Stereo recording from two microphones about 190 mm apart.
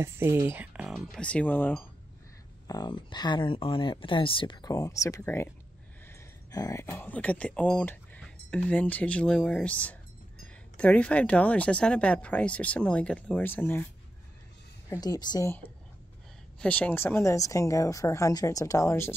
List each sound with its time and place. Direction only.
0.0 s speech: 10° right (ahead or behind); by 1.9 s 10° left (ahead or behind)
2.7 s speech: 25° left (ahead or behind)
14.9 s speech: 20° left (ahead or behind)